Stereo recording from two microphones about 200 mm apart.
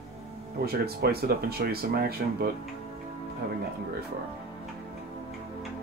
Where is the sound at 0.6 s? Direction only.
50° right (ahead or behind).